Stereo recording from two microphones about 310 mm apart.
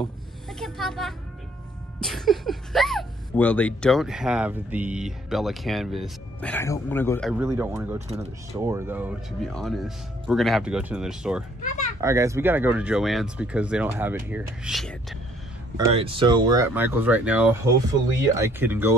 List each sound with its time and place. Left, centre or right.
0.0 s a sound: centre
2.0 s speech: centre
8.1 s speech: centre
8.6 s speech: centre
15.8 s speech: centre